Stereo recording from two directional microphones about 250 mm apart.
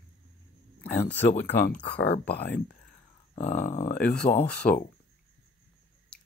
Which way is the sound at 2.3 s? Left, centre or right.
Left.